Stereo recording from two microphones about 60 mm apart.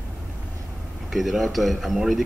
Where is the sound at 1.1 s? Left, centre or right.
Centre.